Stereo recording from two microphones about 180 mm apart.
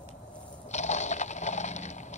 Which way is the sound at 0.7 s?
40° left (ahead or behind).